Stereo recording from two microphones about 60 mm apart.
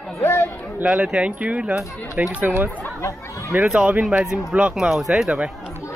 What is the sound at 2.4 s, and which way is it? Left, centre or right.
Speech, right.